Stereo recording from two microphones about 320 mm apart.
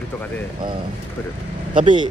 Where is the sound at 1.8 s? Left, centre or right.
Centre.